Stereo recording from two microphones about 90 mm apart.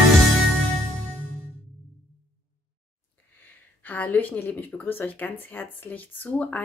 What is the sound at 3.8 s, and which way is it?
Speech, 20° left (ahead or behind).